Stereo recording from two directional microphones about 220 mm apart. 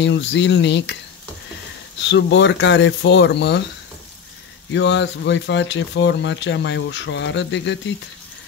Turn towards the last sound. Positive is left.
turn(degrees=55)  # may be behind; listen again after turning